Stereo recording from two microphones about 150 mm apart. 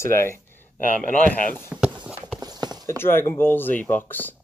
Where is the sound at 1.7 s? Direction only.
5° right (ahead or behind).